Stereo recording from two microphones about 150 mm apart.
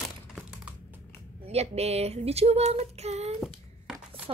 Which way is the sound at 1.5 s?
45° right (ahead or behind).